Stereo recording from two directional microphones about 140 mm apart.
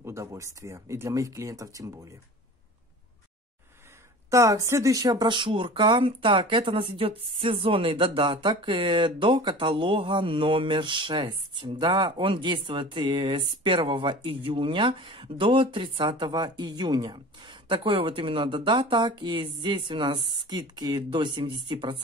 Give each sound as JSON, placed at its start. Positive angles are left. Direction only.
{"t": 0.0, "sound": "speech", "side_deg": -20}
{"t": 4.3, "sound": "speech", "side_deg": -25}